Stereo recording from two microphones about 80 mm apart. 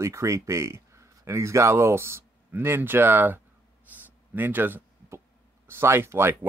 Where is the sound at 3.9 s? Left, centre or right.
Right.